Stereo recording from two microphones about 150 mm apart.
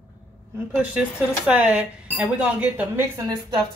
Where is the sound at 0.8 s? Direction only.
10° right (ahead or behind).